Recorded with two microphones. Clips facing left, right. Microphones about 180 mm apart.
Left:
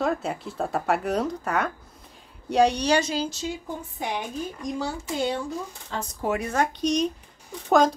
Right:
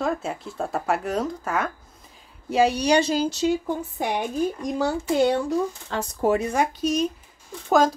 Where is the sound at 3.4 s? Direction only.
70° right (ahead or behind).